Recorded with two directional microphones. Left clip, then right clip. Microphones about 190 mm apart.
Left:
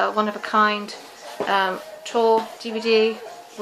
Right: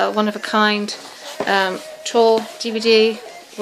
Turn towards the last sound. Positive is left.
turn(degrees=-50)  # may be behind; listen again after turning